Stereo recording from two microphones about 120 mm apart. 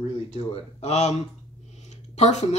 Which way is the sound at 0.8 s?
70° left (ahead or behind).